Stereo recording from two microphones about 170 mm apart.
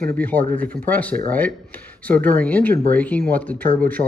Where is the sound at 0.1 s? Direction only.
10° left (ahead or behind).